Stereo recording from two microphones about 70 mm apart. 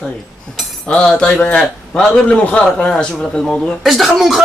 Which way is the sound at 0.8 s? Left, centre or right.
Centre.